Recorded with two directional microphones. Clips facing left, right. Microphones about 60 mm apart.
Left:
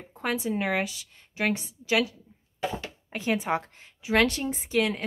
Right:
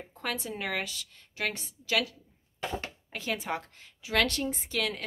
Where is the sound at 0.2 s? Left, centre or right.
Centre.